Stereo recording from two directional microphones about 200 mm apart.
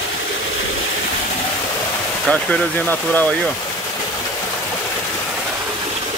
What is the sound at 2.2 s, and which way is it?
Speech, 5° left (ahead or behind).